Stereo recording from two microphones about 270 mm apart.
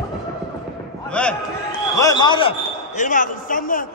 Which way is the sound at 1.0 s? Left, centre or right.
Centre.